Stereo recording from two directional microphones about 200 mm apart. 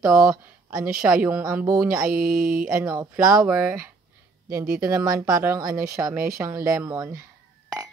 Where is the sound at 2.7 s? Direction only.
10° right (ahead or behind).